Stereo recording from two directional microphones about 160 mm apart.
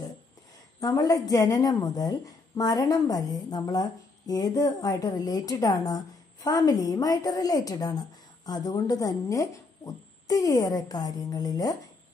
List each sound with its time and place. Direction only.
0.7 s a woman's voice: 20° left (ahead or behind)